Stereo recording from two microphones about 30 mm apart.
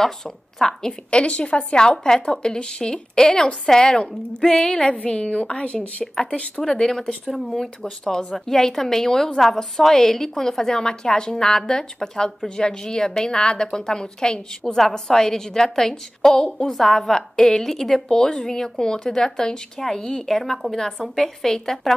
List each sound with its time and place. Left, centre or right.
0.6 s speech: centre
1.1 s a woman's voice: left
6.6 s a woman's voice: centre
7.8 s a woman's voice: left
18.1 s a woman's voice: left; by 22.0 s centre